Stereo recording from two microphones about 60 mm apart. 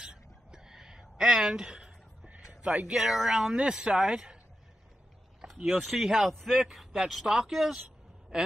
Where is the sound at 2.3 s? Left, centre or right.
Right.